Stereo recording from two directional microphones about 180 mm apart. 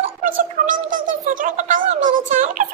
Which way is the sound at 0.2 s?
45° right (ahead or behind).